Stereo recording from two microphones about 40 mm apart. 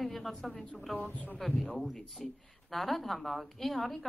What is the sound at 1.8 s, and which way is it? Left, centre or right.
A woman's voice, centre.